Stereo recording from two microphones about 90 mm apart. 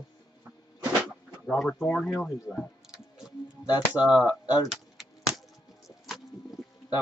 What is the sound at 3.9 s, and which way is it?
Speech, 15° right (ahead or behind).